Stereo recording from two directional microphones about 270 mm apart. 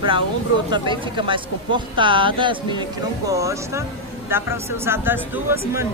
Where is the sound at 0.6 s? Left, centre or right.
Centre.